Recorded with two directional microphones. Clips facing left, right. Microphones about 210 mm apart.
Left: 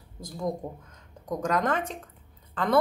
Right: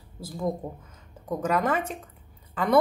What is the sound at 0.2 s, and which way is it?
Speech, 5° right (ahead or behind).